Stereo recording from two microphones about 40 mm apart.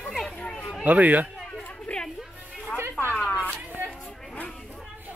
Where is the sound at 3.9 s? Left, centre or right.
Left.